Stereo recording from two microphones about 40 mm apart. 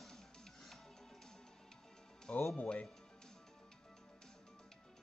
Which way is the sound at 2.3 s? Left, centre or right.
Left.